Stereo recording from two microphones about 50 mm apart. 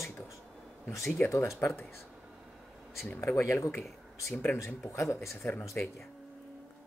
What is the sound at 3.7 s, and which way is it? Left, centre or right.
Speech, left.